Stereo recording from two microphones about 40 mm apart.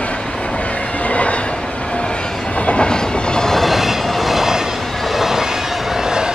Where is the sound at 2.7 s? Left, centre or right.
Left.